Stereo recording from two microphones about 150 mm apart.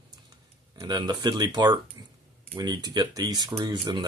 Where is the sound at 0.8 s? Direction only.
30° right (ahead or behind).